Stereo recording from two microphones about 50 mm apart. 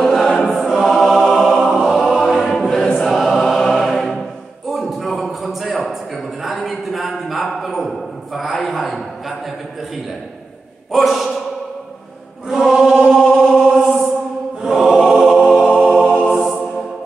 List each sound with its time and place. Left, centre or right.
0.0 s choir: centre
1.6 s music: centre
2.0 s choir: centre
3.2 s music: centre
4.6 s a sound: centre
10.9 s a sound: centre
12.4 s chant: centre
12.8 s chant: centre
13.7 s chant: centre
14.6 s mantra: centre
15.0 s music: centre